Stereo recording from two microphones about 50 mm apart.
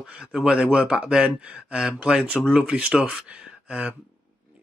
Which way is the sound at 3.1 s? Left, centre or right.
Centre.